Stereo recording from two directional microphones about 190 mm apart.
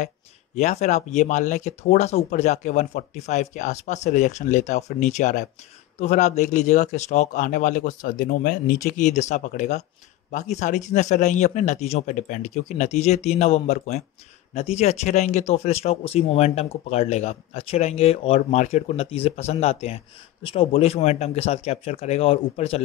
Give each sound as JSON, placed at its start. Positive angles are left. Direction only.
{"t": 0.6, "sound": "speech", "side_deg": 35}